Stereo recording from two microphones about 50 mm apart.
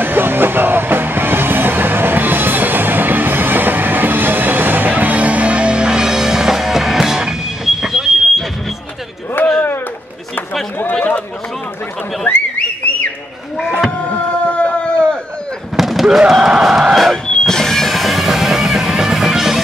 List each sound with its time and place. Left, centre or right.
0.0 s music: right; by 8.5 s centre
9.4 s chop: left
10.8 s chatter: left
12.3 s a sound: left
13.8 s chop: left
15.7 s fireworks: centre
16.2 s music: centre
17.3 s music: centre